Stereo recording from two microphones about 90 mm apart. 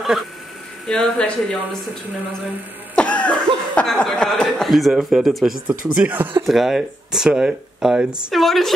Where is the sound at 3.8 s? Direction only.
5° left (ahead or behind).